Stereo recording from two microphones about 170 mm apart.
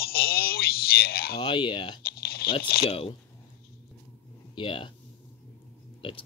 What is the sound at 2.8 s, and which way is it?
Speech, 35° left (ahead or behind).